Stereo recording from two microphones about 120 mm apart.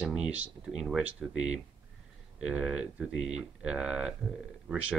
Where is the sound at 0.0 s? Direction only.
10° right (ahead or behind).